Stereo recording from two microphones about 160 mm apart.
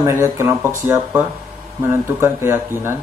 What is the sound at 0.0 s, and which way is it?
Speech, 15° right (ahead or behind).